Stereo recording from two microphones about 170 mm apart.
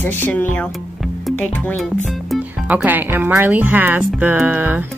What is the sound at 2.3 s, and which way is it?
Speech, 5° right (ahead or behind).